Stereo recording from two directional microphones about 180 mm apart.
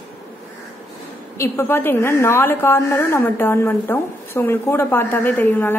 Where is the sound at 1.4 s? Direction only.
15° left (ahead or behind).